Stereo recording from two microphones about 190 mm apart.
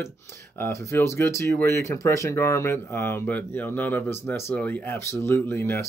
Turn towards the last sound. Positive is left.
turn(degrees=15)  # may be behind; listen again after turning